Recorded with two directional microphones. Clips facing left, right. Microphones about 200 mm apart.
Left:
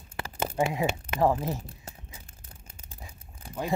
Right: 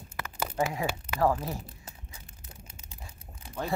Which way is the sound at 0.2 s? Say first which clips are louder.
Left 2 dB; 30° left (ahead or behind).